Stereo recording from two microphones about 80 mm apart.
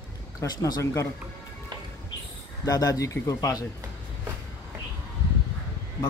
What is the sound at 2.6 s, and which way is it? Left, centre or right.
A man's voice, left.